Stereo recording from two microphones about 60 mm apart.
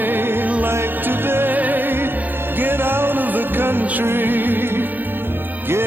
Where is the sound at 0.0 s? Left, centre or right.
Right.